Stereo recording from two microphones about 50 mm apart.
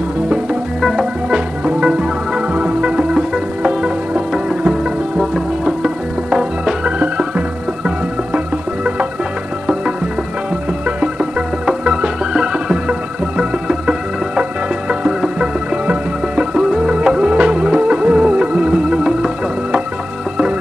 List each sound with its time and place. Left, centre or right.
0.7 s music: centre
1.3 s music: centre
3.0 s music: centre
3.6 s music: right
4.3 s music: centre
11.0 s music: centre